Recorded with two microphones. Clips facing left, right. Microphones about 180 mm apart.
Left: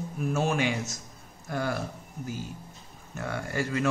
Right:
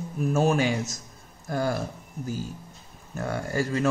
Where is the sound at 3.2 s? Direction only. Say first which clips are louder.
Right 3 dB; 40° right (ahead or behind).